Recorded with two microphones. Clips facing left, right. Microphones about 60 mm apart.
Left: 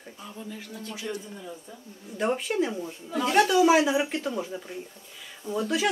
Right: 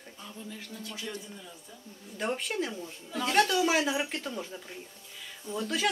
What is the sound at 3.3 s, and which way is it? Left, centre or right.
Speech, centre.